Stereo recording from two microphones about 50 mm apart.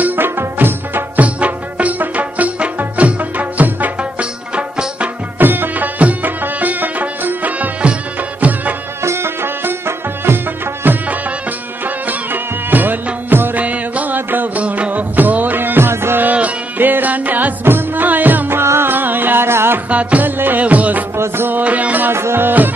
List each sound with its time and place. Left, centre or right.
0.0 s music: right
1.2 s music: right
4.2 s music: right
5.4 s music: right
9.0 s music: right
13.6 s music: right
16.2 s music: right
18.6 s music: right
18.9 s music: right
19.9 s music: right
20.2 s music: right
22.1 s music: right